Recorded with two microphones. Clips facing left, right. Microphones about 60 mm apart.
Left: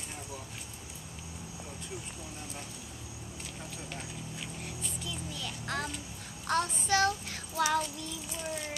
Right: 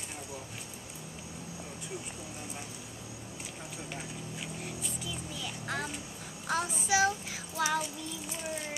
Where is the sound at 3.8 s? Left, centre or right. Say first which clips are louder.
Right 1 dB; centre.